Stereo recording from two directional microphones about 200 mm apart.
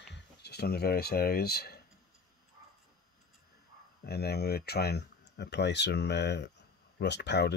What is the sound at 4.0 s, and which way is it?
Speech, 50° left (ahead or behind).